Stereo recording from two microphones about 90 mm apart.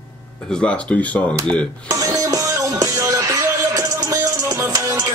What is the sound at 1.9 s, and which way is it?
Music, 40° right (ahead or behind).